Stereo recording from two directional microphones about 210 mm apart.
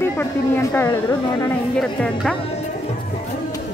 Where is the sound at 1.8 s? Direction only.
5° left (ahead or behind).